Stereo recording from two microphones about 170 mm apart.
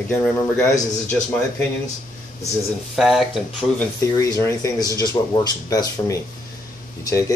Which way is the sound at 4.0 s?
20° left (ahead or behind).